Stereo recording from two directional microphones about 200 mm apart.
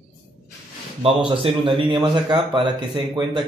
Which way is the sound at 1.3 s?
25° right (ahead or behind).